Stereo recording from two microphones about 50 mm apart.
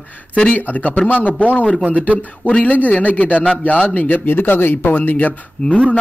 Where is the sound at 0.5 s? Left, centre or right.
Left.